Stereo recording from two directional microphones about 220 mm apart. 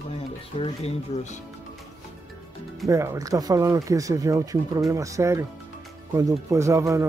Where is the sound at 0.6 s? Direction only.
30° left (ahead or behind).